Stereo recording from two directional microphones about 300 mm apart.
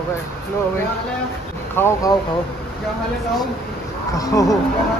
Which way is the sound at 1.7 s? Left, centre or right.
Centre.